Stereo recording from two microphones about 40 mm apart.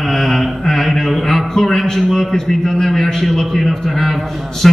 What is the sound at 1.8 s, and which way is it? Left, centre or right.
A man's voice, centre.